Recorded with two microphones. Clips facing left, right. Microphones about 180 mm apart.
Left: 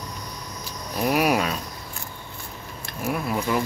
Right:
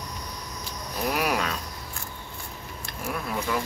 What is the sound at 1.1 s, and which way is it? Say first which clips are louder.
Speech: left 6 dB; 10° left (ahead or behind).